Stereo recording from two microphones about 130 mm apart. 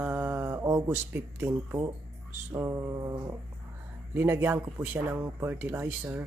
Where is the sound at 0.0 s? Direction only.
15° right (ahead or behind).